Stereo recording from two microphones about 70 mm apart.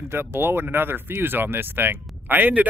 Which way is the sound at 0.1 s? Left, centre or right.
Right.